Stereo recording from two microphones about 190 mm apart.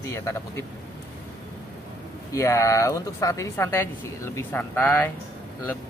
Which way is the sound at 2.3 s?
15° left (ahead or behind).